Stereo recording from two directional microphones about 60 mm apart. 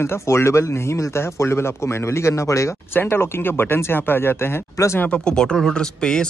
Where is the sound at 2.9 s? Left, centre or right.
Left.